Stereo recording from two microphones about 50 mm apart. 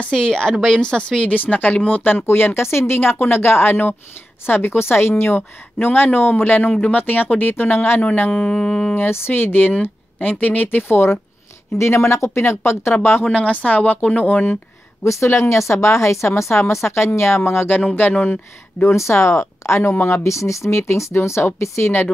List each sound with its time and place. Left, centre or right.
0.1 s speech: centre
1.4 s speech: left
6.7 s speech: left
8.0 s speech: left
8.4 s speech: centre
8.9 s speech: left
11.7 s speech: left
13.2 s speech: left
15.0 s speech: left
17.6 s speech: left
18.9 s speech: left